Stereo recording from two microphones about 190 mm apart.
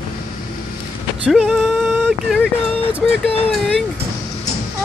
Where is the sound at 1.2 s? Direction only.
Centre (ahead or behind).